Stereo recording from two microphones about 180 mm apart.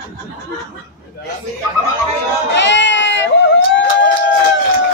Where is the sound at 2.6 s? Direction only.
85° left.